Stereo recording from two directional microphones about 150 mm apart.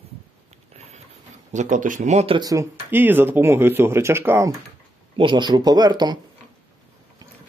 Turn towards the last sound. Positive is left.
turn(degrees=-25)  # may be behind; listen again after turning